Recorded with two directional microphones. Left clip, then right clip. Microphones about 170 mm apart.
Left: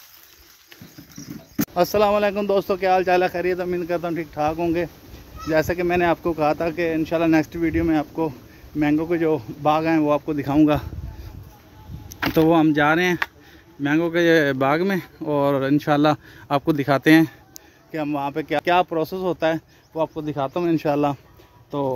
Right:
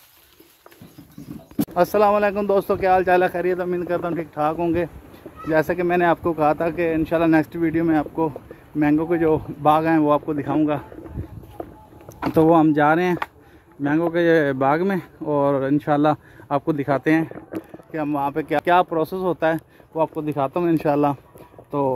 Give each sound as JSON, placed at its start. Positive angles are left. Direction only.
{"t": 1.6, "sound": "speech", "side_deg": 5}
{"t": 10.6, "sound": "speech", "side_deg": 75}
{"t": 12.1, "sound": "speech", "side_deg": 0}
{"t": 13.8, "sound": "speech", "side_deg": 10}
{"t": 17.9, "sound": "speech", "side_deg": 5}